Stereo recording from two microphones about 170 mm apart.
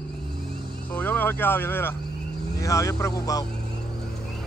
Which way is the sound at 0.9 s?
10° left (ahead or behind).